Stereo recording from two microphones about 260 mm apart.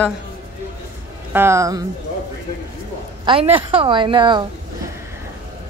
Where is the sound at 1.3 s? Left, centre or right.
Centre.